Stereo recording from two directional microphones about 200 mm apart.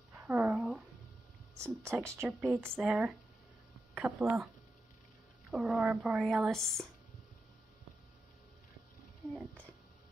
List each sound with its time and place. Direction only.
0.1 s a sound: 10° right (ahead or behind)
1.6 s speech: 15° right (ahead or behind)
5.5 s speech: centre (ahead or behind)
9.3 s speech: centre (ahead or behind)